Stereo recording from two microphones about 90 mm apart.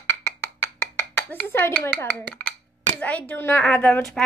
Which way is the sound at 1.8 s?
20° left (ahead or behind).